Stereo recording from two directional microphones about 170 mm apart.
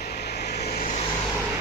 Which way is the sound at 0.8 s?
45° left (ahead or behind).